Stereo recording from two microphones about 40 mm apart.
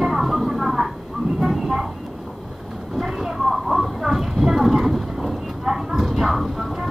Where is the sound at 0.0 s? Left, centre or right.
Centre.